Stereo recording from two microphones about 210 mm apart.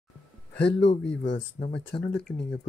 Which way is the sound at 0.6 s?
55° left (ahead or behind).